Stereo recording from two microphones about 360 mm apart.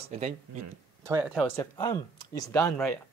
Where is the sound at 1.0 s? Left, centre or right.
Centre.